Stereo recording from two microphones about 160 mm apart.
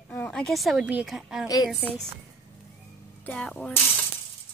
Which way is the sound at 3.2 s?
10° left (ahead or behind).